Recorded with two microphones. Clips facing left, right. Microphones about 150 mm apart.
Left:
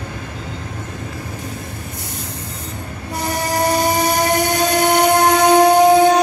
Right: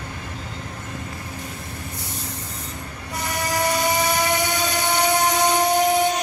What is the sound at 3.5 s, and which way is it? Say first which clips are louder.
Train: left 5 dB; 35° left (ahead or behind).